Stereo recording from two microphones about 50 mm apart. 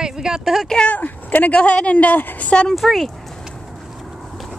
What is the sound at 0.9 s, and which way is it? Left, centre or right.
Speech, left.